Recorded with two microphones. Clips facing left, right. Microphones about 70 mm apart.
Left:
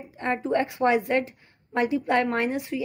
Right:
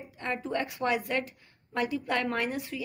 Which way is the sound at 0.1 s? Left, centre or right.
Left.